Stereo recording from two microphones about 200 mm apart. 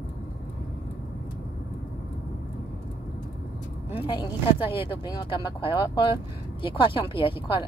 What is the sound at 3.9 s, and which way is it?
Speech, 25° left (ahead or behind).